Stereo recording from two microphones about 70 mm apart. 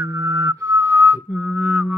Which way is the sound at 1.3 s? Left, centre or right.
Centre.